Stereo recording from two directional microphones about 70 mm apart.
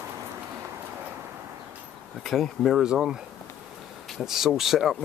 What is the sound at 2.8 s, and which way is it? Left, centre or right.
Speech, centre.